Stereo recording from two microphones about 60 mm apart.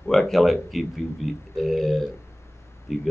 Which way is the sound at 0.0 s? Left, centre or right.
Centre.